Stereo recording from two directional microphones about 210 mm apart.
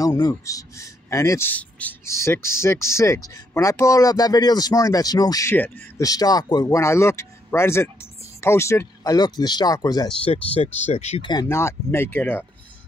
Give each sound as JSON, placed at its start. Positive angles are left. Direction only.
{"t": 0.0, "sound": "speech", "side_deg": 15}